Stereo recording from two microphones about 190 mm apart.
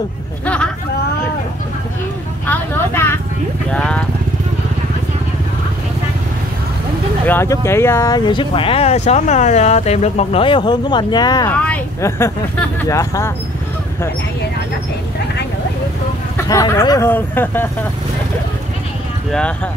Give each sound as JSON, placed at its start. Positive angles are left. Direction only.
{"t": 2.4, "sound": "vehicle", "side_deg": 10}
{"t": 7.2, "sound": "speech", "side_deg": 10}
{"t": 11.5, "sound": "speech", "side_deg": 5}
{"t": 16.3, "sound": "speech", "side_deg": 15}